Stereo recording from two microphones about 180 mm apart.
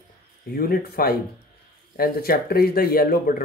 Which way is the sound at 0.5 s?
55° left (ahead or behind).